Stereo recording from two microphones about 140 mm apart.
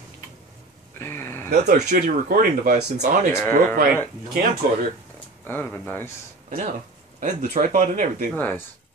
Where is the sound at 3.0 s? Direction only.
65° right (ahead or behind).